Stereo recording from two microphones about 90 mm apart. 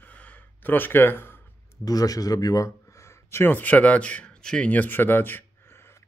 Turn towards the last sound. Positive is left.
turn(degrees=25)  # may be behind; listen again after turning